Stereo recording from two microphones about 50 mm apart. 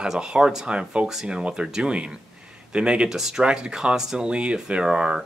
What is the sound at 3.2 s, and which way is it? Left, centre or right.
Speech, centre.